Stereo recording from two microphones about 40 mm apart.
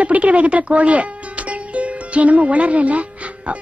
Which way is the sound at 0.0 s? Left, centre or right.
Right.